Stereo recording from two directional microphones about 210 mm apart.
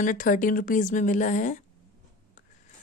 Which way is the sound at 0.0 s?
40° left (ahead or behind).